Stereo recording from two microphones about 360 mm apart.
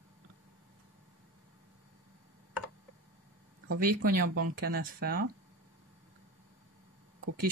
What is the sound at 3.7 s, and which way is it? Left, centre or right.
Speech, right.